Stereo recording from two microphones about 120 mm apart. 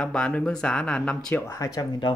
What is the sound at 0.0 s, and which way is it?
Speech, 5° left (ahead or behind).